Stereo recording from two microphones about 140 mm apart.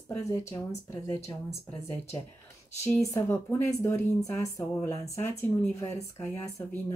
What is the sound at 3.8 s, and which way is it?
Speech, 25° left (ahead or behind).